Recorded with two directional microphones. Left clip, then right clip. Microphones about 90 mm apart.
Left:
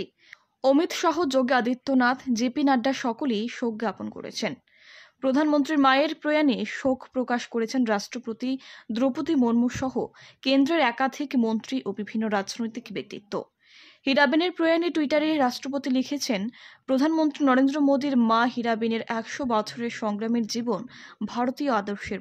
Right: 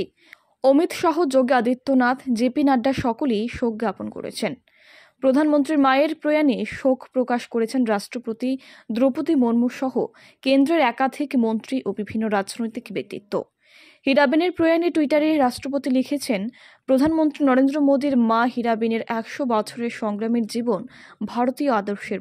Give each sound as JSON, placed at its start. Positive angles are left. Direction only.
{"t": 0.6, "sound": "a woman's voice", "side_deg": -25}